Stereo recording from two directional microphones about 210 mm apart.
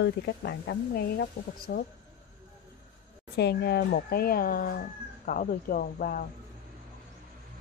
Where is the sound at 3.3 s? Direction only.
50° left (ahead or behind).